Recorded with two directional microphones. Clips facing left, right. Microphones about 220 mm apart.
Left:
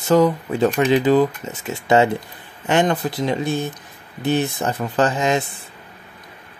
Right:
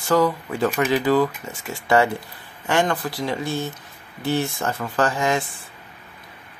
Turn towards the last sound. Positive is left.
turn(degrees=20)  # may be behind; listen again after turning